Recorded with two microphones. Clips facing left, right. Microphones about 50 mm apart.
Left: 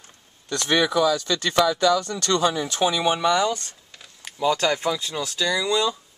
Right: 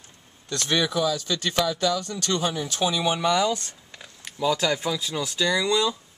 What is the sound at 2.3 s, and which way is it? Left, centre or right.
Speech, left.